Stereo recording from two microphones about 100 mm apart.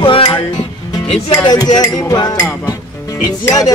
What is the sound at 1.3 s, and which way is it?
Music, 45° left (ahead or behind).